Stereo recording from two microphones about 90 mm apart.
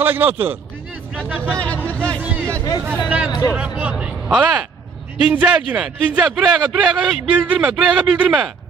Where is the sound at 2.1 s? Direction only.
20° right (ahead or behind).